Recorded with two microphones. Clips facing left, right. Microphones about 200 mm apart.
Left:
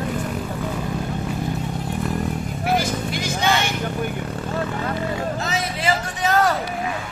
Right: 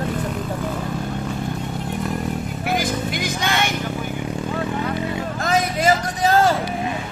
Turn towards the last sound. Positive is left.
turn(degrees=-25)  # may be behind; listen again after turning